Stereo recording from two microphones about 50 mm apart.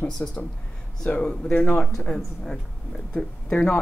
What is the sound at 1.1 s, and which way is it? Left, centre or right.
Speech, left.